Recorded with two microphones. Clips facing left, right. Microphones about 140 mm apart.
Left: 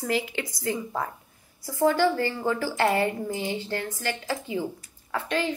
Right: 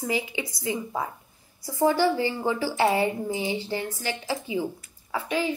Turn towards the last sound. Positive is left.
turn(degrees=-10)  # may be behind; listen again after turning